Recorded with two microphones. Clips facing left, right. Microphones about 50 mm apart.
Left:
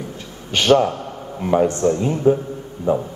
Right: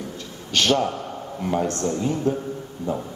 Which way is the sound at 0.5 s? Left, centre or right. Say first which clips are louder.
Left 6 dB; left.